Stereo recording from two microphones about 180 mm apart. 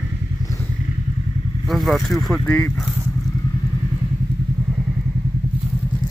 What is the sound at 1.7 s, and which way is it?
Speech, centre (ahead or behind).